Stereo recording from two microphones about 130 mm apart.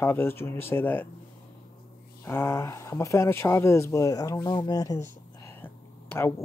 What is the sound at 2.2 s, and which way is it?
Speech, 20° left (ahead or behind).